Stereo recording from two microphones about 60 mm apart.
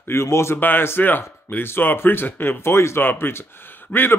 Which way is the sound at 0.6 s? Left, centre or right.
Left.